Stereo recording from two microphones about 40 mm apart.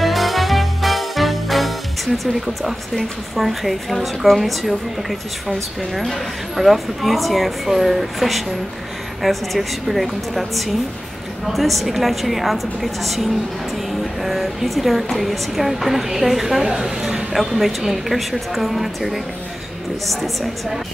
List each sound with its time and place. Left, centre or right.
0.0 s music: centre
3.3 s speech: centre
6.5 s speech: centre
14.2 s a woman's voice: centre